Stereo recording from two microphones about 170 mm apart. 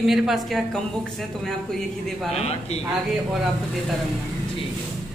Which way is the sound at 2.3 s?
40° left (ahead or behind).